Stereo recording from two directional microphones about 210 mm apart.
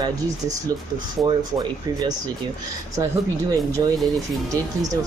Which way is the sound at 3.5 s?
15° right (ahead or behind).